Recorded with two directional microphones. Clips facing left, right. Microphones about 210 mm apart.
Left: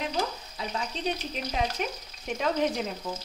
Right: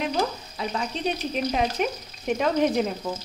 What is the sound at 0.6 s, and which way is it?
Speech, 65° right (ahead or behind).